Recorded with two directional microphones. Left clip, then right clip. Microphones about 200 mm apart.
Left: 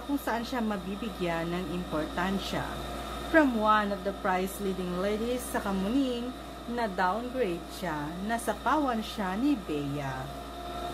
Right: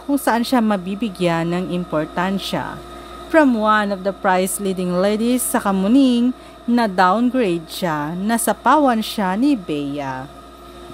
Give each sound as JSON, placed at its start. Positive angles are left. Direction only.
{"t": 0.2, "sound": "a woman's voice", "side_deg": -55}